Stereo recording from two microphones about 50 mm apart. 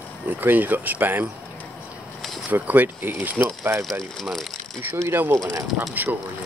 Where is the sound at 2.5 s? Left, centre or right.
Right.